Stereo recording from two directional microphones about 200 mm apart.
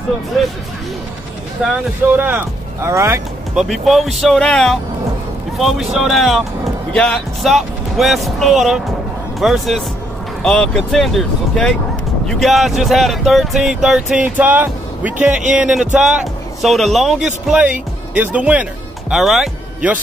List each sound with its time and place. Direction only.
1.6 s speech: 5° right (ahead or behind)
3.5 s speech: centre (ahead or behind)